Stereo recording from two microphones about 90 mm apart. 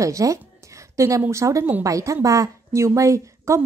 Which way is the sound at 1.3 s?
35° right (ahead or behind).